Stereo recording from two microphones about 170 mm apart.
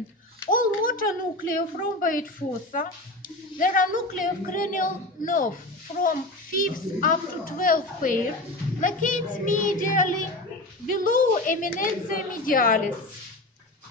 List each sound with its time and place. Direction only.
0.5 s babbling: 55° left (ahead or behind)
1.6 s a child's voice: 55° left (ahead or behind)